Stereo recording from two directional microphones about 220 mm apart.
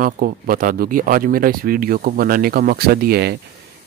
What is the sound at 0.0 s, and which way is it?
Speech, 40° right (ahead or behind).